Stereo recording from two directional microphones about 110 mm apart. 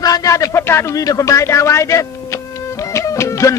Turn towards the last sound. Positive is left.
turn(degrees=30)  # may be behind; listen again after turning